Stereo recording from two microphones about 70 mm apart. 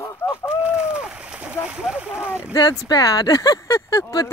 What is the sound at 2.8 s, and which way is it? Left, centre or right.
Speech, left.